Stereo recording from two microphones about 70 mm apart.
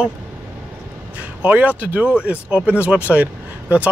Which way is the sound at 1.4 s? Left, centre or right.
Right.